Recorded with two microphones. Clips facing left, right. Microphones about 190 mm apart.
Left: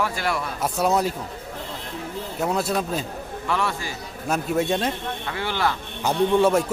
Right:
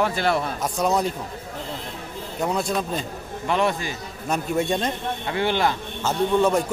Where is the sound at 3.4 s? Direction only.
20° right (ahead or behind).